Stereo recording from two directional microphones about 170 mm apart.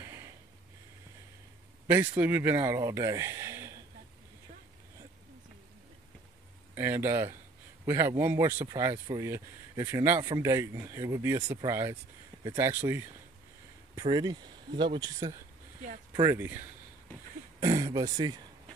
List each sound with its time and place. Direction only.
0.0 s a sound: 15° right (ahead or behind)
1.9 s speech: 10° right (ahead or behind)
6.7 s speech: 15° right (ahead or behind)
14.0 s speech: 25° right (ahead or behind)